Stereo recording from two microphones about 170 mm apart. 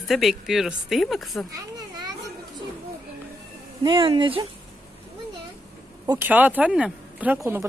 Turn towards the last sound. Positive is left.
turn(degrees=-10)  # may be behind; listen again after turning